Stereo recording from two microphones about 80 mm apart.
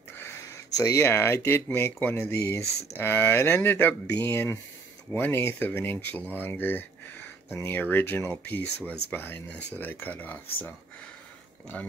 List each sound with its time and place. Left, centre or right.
0.9 s speech: left